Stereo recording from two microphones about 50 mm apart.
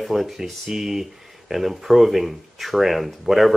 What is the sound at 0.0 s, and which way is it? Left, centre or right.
Speech, centre.